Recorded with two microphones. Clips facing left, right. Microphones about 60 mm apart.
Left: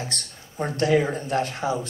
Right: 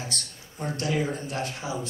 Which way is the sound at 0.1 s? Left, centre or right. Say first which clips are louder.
Left 1 dB; left.